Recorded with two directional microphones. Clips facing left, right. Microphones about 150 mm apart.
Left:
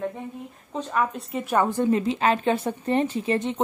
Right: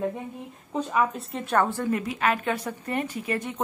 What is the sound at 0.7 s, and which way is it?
Speech, 5° right (ahead or behind).